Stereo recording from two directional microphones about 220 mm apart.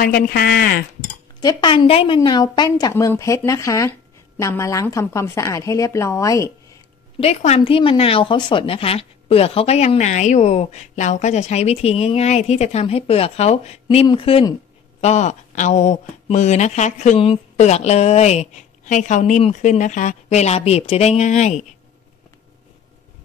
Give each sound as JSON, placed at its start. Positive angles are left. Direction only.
{"t": 0.0, "sound": "speech", "side_deg": 40}
{"t": 1.4, "sound": "speech", "side_deg": 20}
{"t": 7.2, "sound": "speech", "side_deg": 30}